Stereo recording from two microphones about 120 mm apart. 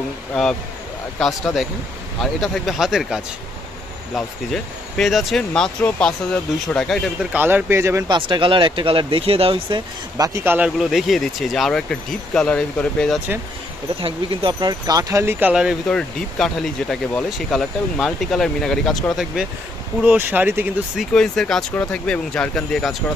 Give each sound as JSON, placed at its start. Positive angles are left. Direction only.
{"t": 0.3, "sound": "speech", "side_deg": 5}
{"t": 7.3, "sound": "speech", "side_deg": -15}
{"t": 8.1, "sound": "speech", "side_deg": -45}
{"t": 10.4, "sound": "speech", "side_deg": -15}
{"t": 10.8, "sound": "speech", "side_deg": -5}
{"t": 14.0, "sound": "speech", "side_deg": -45}
{"t": 15.9, "sound": "speech", "side_deg": 5}
{"t": 20.1, "sound": "speech", "side_deg": -15}
{"t": 21.1, "sound": "speech", "side_deg": 5}